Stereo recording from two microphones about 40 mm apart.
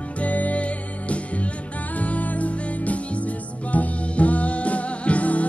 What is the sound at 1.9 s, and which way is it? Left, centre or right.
Music, left.